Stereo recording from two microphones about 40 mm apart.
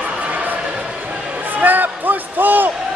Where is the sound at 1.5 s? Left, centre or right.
Right.